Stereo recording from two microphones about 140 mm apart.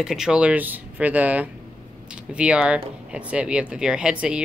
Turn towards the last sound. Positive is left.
turn(degrees=-5)  # may be behind; listen again after turning